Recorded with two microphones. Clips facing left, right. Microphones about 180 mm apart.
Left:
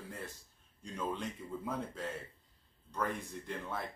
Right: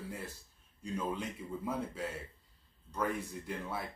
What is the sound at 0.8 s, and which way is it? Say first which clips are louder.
Speech: right 2 dB; 5° right (ahead or behind).